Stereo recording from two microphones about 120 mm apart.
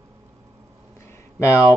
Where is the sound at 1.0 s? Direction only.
25° left (ahead or behind).